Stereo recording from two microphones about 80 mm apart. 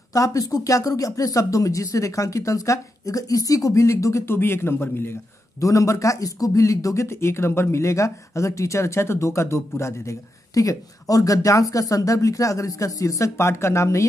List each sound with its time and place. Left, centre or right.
0.1 s speech: left
5.6 s speech: left